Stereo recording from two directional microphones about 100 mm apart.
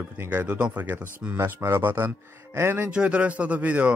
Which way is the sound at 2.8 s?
10° right (ahead or behind).